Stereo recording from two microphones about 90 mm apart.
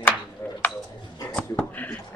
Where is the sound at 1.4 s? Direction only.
15° left (ahead or behind).